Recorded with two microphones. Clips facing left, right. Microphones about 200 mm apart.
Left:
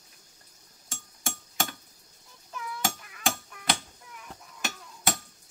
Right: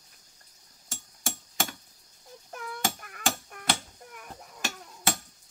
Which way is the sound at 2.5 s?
55° right (ahead or behind).